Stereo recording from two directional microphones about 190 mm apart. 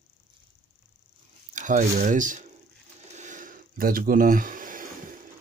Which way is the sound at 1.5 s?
40° right (ahead or behind).